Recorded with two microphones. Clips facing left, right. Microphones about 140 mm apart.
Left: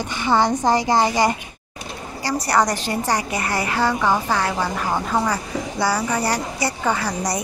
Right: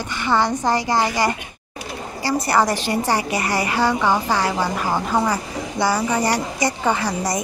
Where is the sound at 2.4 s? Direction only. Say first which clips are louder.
Even; 10° right (ahead or behind).